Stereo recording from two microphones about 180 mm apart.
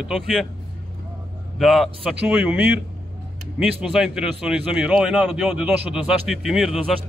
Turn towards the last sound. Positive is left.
turn(degrees=0)  # may be behind; listen again after turning